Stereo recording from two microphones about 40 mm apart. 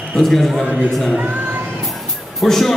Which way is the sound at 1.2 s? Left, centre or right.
Right.